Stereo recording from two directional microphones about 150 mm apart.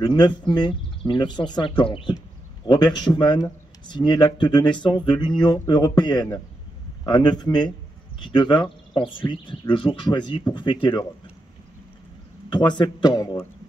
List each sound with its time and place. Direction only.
0.0 s speech: 30° left (ahead or behind)
12.4 s speech: 30° left (ahead or behind)